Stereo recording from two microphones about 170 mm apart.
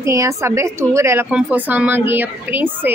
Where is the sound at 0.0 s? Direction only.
15° right (ahead or behind).